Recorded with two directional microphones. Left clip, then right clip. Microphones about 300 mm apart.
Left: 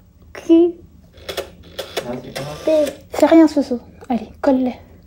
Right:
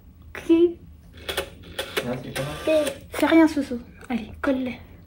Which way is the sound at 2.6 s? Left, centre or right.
Centre.